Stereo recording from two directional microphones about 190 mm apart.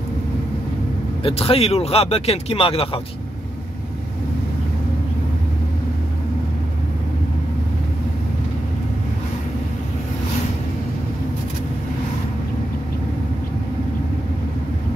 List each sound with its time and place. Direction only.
1.2 s speech: 30° left (ahead or behind)